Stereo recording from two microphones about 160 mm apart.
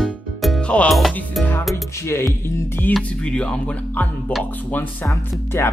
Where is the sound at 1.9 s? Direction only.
20° left (ahead or behind).